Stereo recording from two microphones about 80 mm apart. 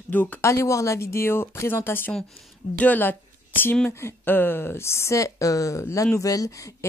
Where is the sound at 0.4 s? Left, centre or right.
Left.